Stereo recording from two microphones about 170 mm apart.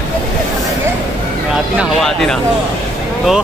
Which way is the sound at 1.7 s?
Centre (ahead or behind).